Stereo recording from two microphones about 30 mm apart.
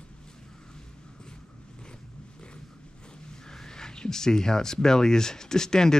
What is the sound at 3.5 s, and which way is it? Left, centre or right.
Speech, centre.